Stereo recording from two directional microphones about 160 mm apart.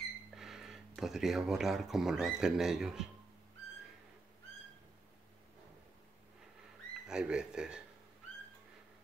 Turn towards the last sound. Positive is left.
turn(degrees=-5)  # may be behind; listen again after turning